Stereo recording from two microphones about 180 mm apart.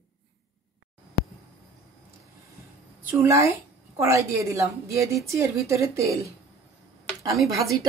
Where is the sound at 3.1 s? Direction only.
15° right (ahead or behind).